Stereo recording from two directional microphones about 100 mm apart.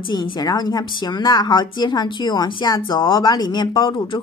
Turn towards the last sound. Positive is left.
turn(degrees=55)  # may be behind; listen again after turning